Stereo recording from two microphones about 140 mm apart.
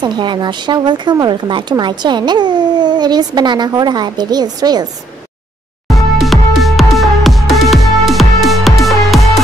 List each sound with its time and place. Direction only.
0.0 s speech: 35° right (ahead or behind)
5.9 s music: centre (ahead or behind)